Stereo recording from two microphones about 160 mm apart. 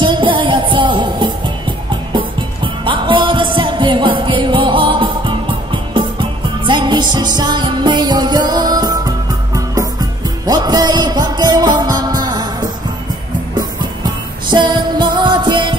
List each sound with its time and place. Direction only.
0.0 s music: 30° right (ahead or behind)